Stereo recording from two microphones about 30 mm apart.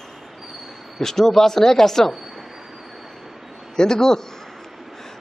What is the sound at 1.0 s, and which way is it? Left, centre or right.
A man's voice, centre.